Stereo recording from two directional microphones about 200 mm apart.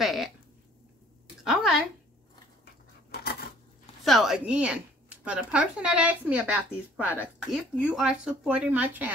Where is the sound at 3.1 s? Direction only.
50° left (ahead or behind).